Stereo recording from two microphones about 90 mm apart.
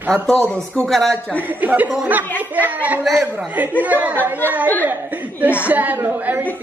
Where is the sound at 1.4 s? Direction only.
20° right (ahead or behind).